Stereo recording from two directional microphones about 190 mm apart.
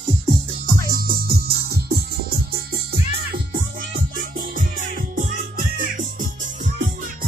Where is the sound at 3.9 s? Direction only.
45° right (ahead or behind).